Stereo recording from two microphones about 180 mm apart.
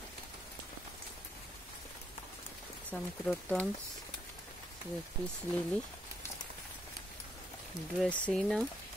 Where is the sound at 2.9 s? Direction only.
10° left (ahead or behind).